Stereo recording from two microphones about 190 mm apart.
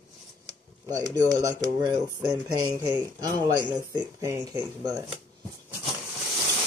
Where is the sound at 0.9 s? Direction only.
20° right (ahead or behind).